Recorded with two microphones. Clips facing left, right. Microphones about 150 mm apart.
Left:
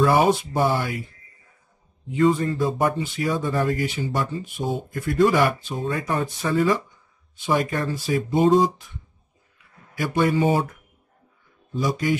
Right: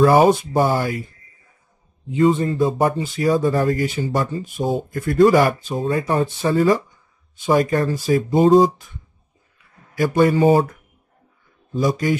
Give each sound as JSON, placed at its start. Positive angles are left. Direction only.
{"t": 0.0, "sound": "speech", "side_deg": -45}
{"t": 2.0, "sound": "speech", "side_deg": -25}
{"t": 9.9, "sound": "speech", "side_deg": -40}
{"t": 11.7, "sound": "speech", "side_deg": -40}